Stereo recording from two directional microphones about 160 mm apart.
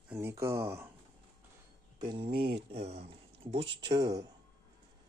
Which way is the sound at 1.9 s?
30° right (ahead or behind).